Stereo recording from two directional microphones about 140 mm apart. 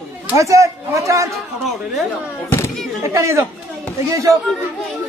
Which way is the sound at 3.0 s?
20° right (ahead or behind).